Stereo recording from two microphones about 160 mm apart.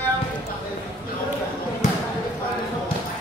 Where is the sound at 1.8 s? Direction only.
50° left (ahead or behind).